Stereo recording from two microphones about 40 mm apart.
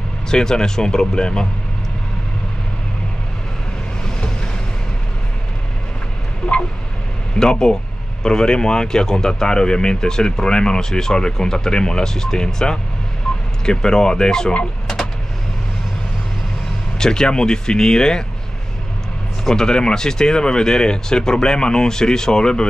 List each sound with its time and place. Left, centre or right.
0.3 s speech: centre
7.3 s speech: centre
17.0 s speech: centre
19.4 s speech: centre